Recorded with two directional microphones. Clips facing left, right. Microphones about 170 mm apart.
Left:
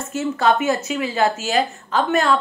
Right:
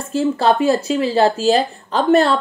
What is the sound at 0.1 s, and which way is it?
Speech, 30° right (ahead or behind).